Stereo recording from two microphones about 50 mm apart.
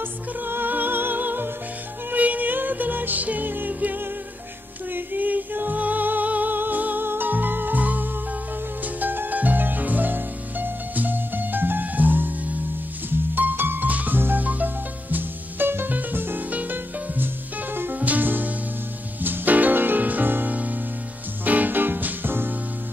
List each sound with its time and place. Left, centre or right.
0.4 s music: right